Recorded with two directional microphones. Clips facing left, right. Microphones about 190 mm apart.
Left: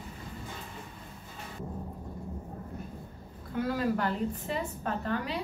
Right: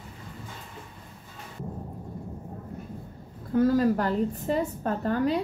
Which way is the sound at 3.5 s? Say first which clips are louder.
Right 8 dB; 40° right (ahead or behind).